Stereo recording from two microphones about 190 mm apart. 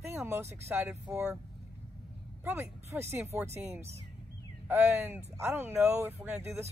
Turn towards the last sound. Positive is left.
turn(degrees=-10)  # may be behind; listen again after turning